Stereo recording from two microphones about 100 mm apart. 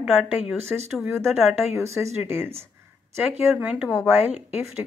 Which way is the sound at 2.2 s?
25° right (ahead or behind).